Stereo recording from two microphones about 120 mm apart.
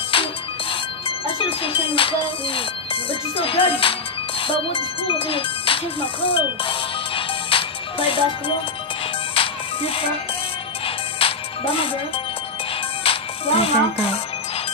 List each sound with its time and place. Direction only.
0.1 s music: 50° left (ahead or behind)
9.3 s music: 50° left (ahead or behind)
11.1 s music: 50° left (ahead or behind)
13.0 s speech: 50° left (ahead or behind)